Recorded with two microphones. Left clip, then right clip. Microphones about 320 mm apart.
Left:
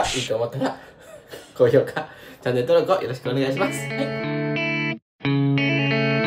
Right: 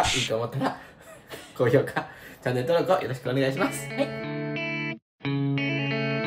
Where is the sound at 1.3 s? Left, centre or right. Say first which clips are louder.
Even; centre.